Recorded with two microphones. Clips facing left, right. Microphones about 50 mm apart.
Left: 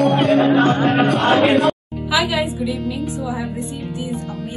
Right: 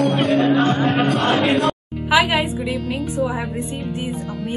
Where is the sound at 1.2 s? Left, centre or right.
Left.